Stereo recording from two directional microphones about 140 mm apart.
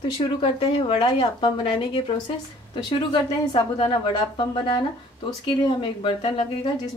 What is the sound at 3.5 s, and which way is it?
Speech, 40° left (ahead or behind).